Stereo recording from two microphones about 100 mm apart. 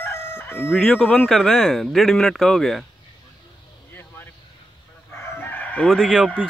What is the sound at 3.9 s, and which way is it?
Vehicle, 20° left (ahead or behind).